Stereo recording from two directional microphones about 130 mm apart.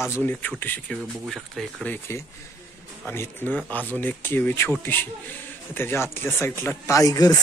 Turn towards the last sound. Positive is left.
turn(degrees=30)  # may be behind; listen again after turning